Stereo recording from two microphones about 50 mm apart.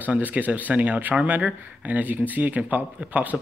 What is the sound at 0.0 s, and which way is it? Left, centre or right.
A man's voice, right.